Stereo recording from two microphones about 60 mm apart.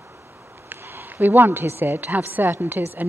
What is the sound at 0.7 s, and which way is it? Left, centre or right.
A woman's voice, right.